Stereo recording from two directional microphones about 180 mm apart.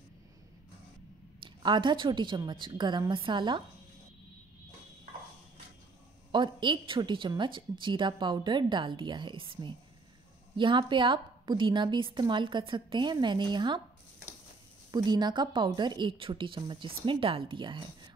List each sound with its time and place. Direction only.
1.4 s a woman's voice: 25° right (ahead or behind)
6.3 s a woman's voice: 25° right (ahead or behind)
14.9 s a woman's voice: 25° right (ahead or behind)